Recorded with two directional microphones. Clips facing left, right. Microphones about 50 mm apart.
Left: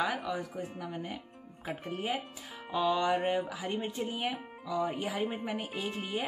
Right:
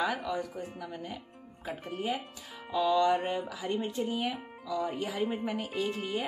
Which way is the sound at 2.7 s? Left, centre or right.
Left.